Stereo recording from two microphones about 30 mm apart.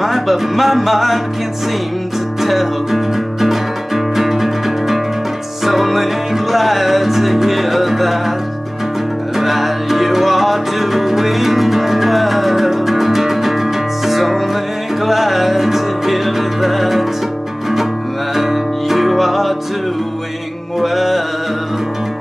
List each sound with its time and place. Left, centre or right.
0.0 s music: centre
2.4 s music: centre
9.4 s music: centre
18.3 s music: centre
20.8 s music: centre